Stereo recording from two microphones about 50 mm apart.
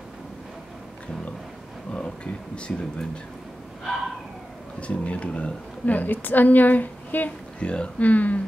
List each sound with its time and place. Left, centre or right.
2.0 s speech: centre
4.7 s speech: left
5.9 s a woman's voice: left
7.6 s a woman's voice: left